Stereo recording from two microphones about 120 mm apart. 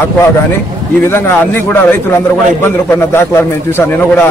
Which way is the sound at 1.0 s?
20° left (ahead or behind).